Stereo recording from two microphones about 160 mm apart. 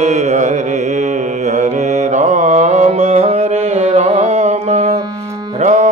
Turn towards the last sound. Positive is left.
turn(degrees=-50)  # may be behind; listen again after turning